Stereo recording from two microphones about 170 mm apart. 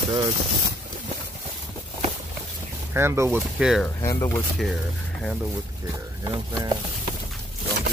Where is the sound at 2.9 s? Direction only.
15° right (ahead or behind).